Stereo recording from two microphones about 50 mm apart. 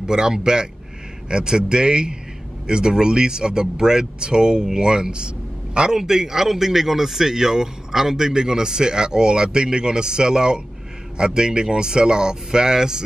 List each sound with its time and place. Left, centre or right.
0.0 s a man's voice: centre